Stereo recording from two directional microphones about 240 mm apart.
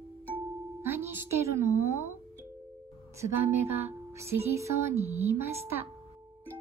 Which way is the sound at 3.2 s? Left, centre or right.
Right.